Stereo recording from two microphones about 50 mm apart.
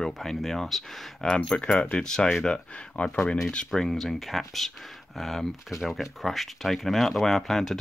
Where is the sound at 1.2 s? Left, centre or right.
Centre.